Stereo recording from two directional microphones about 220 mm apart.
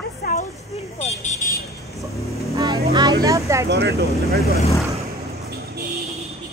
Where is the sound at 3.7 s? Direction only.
45° right (ahead or behind).